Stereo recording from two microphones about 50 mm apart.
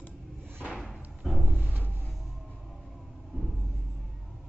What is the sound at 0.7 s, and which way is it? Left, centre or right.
Thump, centre.